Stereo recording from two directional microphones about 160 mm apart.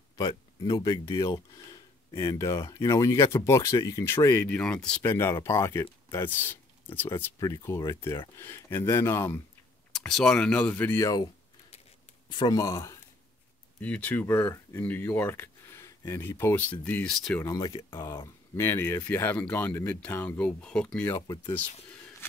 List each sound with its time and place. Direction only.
0.2 s speech: 25° left (ahead or behind); by 5.0 s 5° left (ahead or behind)
5.0 s speech: 15° left (ahead or behind)
9.9 s speech: 5° left (ahead or behind); by 11.2 s 20° left (ahead or behind)
12.3 s speech: 25° left (ahead or behind); by 17.5 s 5° left (ahead or behind)
17.5 s speech: 25° left (ahead or behind)